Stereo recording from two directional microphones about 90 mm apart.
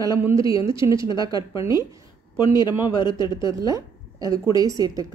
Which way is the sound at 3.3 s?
40° right (ahead or behind).